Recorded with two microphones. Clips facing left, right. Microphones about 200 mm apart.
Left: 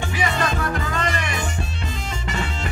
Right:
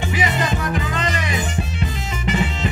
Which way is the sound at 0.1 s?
20° right (ahead or behind).